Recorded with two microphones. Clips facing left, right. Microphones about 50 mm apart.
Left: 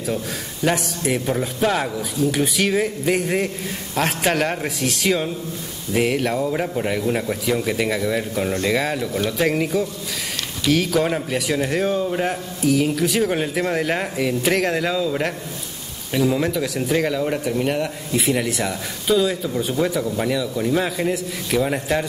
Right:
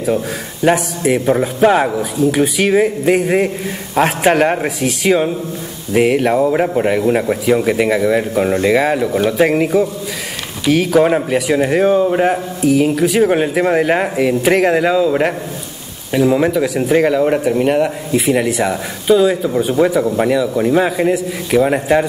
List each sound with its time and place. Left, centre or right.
0.7 s a man's voice: centre